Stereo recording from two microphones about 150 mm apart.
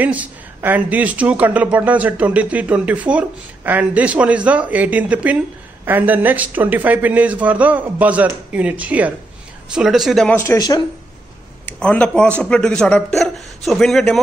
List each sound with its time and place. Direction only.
0.0 s speech: 10° right (ahead or behind)
10.3 s speech: 20° left (ahead or behind)
11.6 s speech: 10° left (ahead or behind)